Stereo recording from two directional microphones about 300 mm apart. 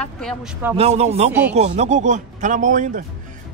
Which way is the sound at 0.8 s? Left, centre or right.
Right.